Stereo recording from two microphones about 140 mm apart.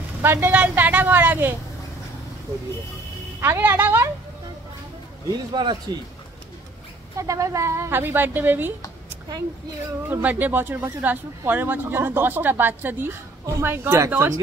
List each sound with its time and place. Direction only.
0.2 s speech: 15° right (ahead or behind)
3.3 s speech: 15° right (ahead or behind)
5.5 s a man's voice: 30° right (ahead or behind)
7.2 s speech: 25° right (ahead or behind)
10.0 s speech: 15° right (ahead or behind)